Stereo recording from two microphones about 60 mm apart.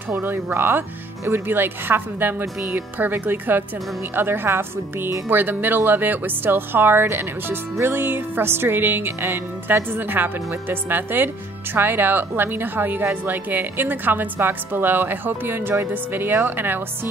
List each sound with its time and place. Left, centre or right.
0.2 s a woman's voice: right